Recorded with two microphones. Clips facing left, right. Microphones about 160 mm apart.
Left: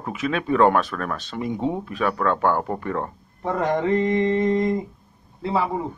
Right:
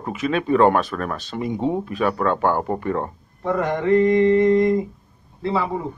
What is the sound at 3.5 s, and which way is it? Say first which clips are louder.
Mantra: right 3 dB; 20° left (ahead or behind).